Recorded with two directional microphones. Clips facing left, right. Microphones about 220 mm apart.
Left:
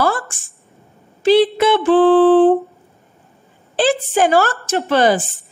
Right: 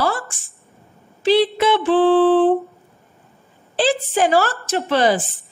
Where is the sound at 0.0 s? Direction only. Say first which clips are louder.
Left 3 dB; 50° left (ahead or behind).